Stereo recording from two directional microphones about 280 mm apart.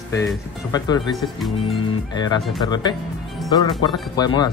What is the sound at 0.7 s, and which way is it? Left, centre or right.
Speech, centre.